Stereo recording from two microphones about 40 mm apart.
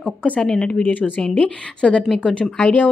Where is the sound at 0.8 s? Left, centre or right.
Left.